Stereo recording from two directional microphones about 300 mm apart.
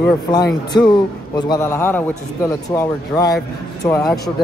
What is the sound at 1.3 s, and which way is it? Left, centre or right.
Speech, centre.